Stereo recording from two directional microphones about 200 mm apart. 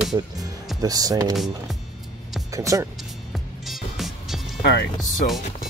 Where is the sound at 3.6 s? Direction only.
Centre (ahead or behind).